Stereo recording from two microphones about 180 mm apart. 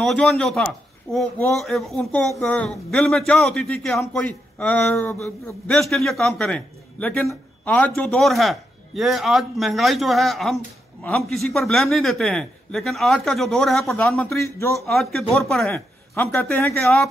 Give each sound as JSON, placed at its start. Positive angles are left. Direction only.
{"t": 0.0, "sound": "a man's voice", "side_deg": 0}
{"t": 14.4, "sound": "a man's voice", "side_deg": 15}
{"t": 14.9, "sound": "a man's voice", "side_deg": 0}